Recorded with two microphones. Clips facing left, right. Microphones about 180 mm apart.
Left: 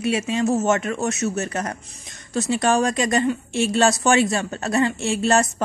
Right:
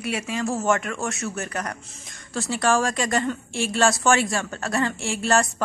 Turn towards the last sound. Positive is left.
turn(degrees=20)  # may be behind; listen again after turning